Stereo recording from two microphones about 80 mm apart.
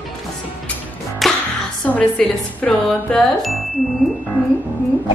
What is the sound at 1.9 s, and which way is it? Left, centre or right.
Speech, centre.